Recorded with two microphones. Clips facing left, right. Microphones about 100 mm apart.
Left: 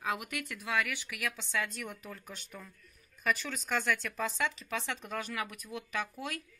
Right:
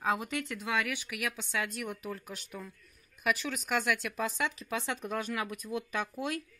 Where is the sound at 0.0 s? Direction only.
30° right (ahead or behind).